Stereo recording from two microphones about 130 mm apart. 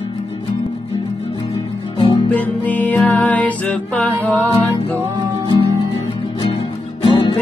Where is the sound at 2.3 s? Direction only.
15° left (ahead or behind).